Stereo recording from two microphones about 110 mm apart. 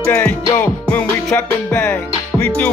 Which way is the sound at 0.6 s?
15° left (ahead or behind).